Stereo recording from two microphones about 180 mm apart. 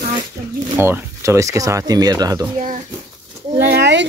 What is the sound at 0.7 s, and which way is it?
Speech, 10° right (ahead or behind).